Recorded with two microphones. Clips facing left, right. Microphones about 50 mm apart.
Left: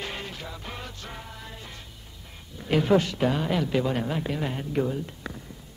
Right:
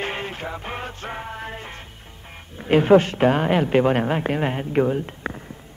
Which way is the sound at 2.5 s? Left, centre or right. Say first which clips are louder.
Right 7 dB; right.